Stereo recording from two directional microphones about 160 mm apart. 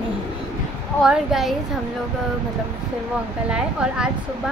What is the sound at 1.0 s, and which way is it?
Speech, centre (ahead or behind).